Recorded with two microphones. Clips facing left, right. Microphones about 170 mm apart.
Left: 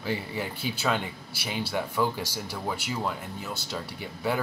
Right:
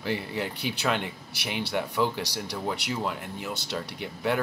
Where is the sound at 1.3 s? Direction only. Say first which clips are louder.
Even; 65° right (ahead or behind).